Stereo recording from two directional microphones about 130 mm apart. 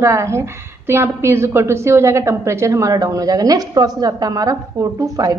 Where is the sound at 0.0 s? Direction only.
20° right (ahead or behind).